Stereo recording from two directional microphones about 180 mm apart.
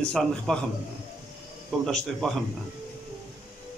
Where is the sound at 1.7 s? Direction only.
Centre (ahead or behind).